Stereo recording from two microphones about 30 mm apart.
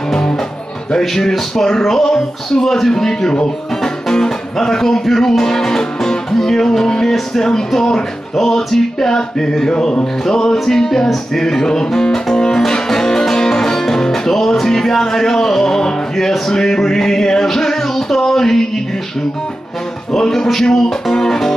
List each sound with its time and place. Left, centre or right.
0.9 s music: centre
2.9 s a man's voice: centre
4.6 s music: centre
20.1 s a man's voice: centre